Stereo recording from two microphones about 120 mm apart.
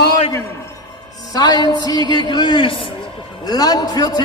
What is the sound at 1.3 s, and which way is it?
A man's voice, 35° left (ahead or behind).